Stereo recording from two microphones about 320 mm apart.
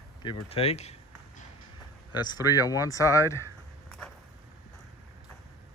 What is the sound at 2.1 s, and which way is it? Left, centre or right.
A man's voice, centre.